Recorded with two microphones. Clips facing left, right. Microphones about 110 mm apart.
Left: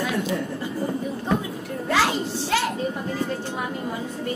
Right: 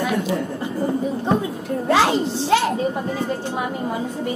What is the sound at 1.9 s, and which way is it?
Music, 25° right (ahead or behind).